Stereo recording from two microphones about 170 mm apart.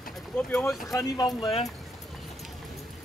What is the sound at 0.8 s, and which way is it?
Speech, 20° left (ahead or behind).